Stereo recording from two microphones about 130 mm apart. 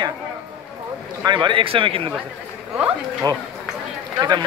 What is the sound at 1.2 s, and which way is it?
Speech, 40° right (ahead or behind).